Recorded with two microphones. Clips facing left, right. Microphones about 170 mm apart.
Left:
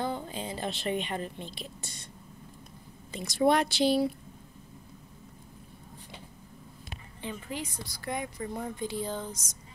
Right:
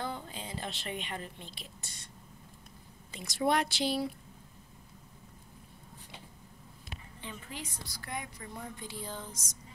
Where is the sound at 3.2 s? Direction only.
30° left (ahead or behind).